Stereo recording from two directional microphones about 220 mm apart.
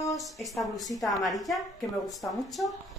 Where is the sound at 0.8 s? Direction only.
15° left (ahead or behind).